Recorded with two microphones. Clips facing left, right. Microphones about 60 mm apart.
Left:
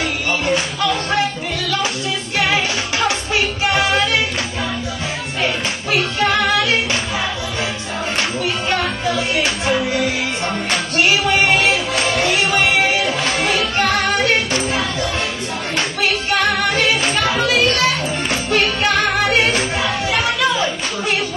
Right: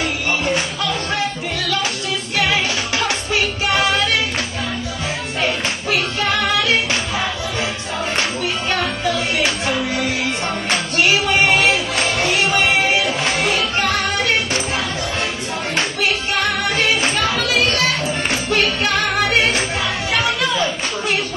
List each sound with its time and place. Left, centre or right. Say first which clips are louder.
0.5 s music: left 2 dB; left
2.3 s music: left 1 dB; left
5.4 s music: even; left
13.2 s music: even; right
13.5 s music: left 1 dB; left
16.0 s music: left 4 dB; left